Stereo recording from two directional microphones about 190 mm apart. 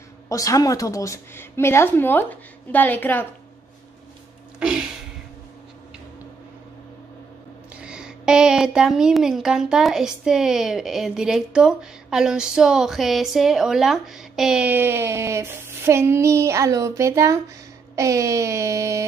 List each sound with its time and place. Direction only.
0.3 s a woman's voice: 15° left (ahead or behind)
4.6 s a sound: 5° right (ahead or behind)
7.7 s speech: 5° right (ahead or behind)